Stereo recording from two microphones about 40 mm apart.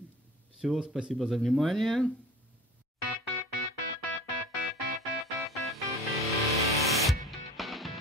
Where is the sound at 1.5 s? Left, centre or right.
Centre.